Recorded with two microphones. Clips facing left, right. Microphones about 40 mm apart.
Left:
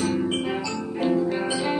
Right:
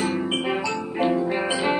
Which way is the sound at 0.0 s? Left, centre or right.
Right.